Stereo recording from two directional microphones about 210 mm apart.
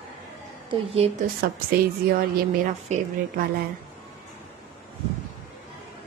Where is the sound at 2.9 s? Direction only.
35° right (ahead or behind).